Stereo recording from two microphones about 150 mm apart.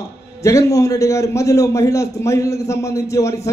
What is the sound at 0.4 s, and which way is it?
A man's voice, 20° left (ahead or behind).